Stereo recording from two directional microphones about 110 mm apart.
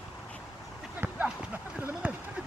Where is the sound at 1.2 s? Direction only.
15° right (ahead or behind).